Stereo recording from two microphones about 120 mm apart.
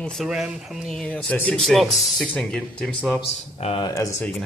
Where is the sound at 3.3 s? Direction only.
55° left (ahead or behind).